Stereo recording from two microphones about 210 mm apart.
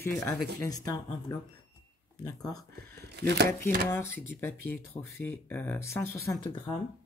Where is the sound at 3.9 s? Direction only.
10° left (ahead or behind).